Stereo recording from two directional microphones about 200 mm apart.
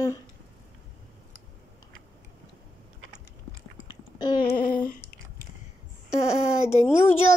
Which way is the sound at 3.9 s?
20° left (ahead or behind).